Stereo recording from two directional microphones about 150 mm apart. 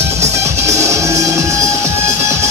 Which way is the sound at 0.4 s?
20° right (ahead or behind).